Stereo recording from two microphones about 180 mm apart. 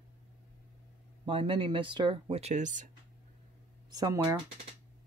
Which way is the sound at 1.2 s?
30° right (ahead or behind).